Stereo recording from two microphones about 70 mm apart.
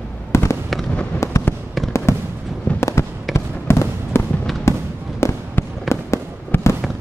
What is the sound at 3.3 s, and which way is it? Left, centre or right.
Fireworks, left.